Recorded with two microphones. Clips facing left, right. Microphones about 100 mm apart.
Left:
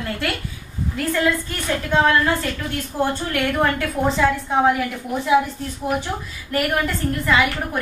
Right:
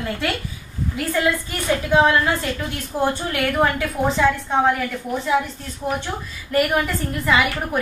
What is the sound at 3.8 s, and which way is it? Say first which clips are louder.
Speech: even; centre (ahead or behind).